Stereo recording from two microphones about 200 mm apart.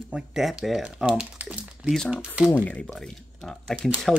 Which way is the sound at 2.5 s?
5° left (ahead or behind).